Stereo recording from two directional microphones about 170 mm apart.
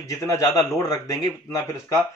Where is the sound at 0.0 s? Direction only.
20° left (ahead or behind).